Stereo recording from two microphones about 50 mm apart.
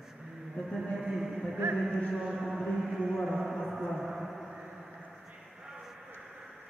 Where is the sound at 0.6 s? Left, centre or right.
Left.